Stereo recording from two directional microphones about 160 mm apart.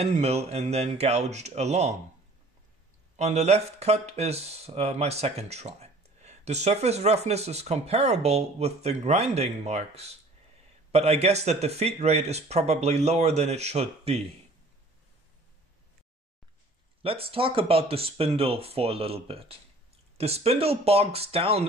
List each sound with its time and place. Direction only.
0.0 s speech: 40° right (ahead or behind)
3.2 s speech: 45° right (ahead or behind)
17.0 s speech: 35° right (ahead or behind)